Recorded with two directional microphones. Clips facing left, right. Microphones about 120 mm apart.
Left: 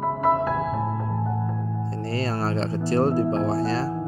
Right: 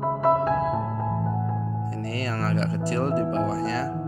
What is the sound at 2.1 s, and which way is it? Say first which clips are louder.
Speech: left 2 dB; 30° left (ahead or behind).